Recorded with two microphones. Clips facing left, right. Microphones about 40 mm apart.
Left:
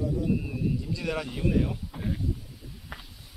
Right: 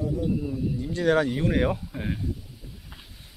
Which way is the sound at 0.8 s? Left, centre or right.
Right.